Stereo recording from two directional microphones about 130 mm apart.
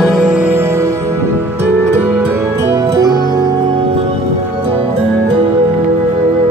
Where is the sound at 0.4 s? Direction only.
15° right (ahead or behind).